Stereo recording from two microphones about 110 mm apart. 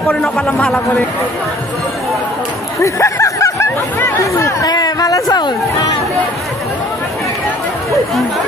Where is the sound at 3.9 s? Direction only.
25° left (ahead or behind).